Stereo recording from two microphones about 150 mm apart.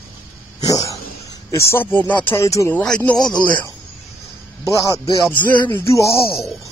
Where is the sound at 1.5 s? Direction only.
20° left (ahead or behind).